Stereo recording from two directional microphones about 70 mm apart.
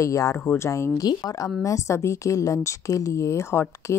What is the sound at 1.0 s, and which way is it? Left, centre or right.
A woman's voice, left.